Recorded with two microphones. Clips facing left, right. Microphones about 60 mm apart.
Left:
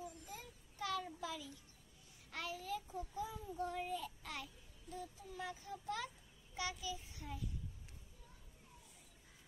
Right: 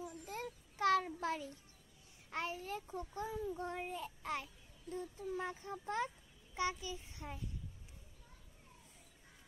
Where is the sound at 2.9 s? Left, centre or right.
Right.